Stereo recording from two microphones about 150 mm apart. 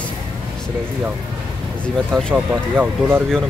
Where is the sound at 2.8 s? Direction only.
15° right (ahead or behind).